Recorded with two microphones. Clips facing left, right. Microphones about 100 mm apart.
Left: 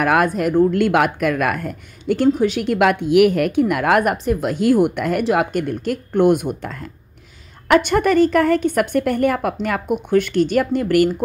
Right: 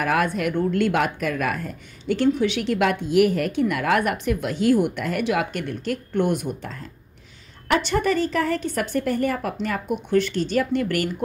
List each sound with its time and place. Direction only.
0.0 s a woman's voice: 60° left (ahead or behind)
0.3 s a woman's voice: 40° left (ahead or behind)
0.7 s a woman's voice: 60° left (ahead or behind)
4.2 s a woman's voice: 35° left (ahead or behind)
4.5 s a woman's voice: 50° left (ahead or behind)